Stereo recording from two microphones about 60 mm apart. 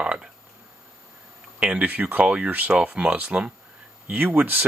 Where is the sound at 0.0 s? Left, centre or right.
Centre.